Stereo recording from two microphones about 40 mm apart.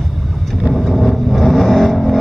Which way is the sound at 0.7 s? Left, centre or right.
Centre.